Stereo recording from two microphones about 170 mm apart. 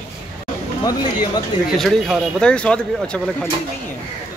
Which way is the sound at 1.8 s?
Centre (ahead or behind).